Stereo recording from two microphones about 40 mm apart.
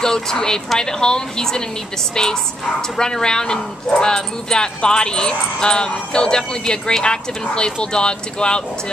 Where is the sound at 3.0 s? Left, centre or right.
Centre.